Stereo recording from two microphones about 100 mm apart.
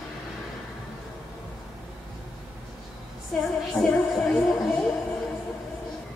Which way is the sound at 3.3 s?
Centre (ahead or behind).